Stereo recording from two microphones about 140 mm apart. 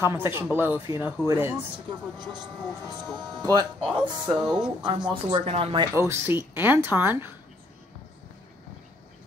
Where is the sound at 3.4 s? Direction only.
30° right (ahead or behind).